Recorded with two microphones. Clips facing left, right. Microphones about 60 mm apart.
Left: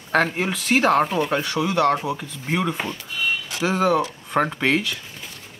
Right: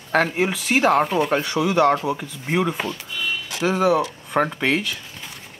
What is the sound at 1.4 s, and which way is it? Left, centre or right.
Speech, centre.